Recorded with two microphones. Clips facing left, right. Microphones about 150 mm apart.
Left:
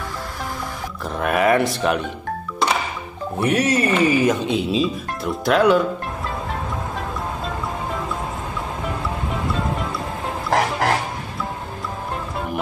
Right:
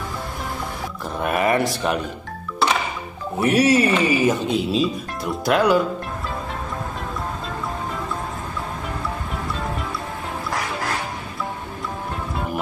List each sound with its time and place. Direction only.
1.1 s speech: centre (ahead or behind)
3.3 s speech: 5° right (ahead or behind)
10.5 s music: 80° left